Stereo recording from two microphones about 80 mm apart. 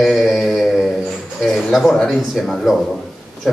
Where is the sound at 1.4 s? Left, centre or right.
Centre.